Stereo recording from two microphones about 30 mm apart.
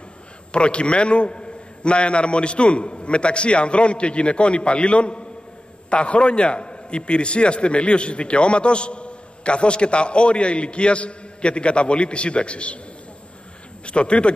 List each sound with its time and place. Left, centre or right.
0.5 s a man's voice: left
13.8 s a man's voice: left